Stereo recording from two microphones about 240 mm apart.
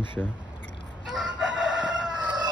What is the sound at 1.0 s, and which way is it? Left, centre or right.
Chicken, centre.